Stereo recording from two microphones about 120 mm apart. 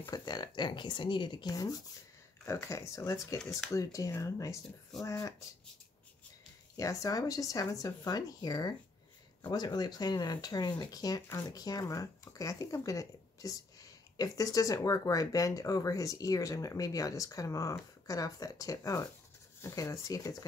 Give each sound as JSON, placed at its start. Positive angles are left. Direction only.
{"t": 0.1, "sound": "speech", "side_deg": 35}
{"t": 6.8, "sound": "speech", "side_deg": 25}